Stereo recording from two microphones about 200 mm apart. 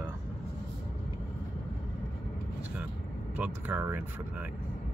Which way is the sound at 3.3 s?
10° right (ahead or behind).